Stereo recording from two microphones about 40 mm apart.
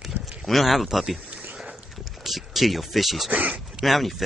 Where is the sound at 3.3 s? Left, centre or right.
Right.